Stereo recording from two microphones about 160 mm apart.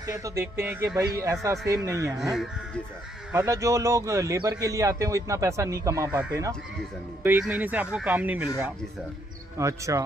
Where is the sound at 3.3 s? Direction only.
15° right (ahead or behind).